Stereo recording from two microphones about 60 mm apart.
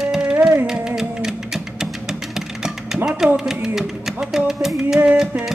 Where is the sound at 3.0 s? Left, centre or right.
Centre.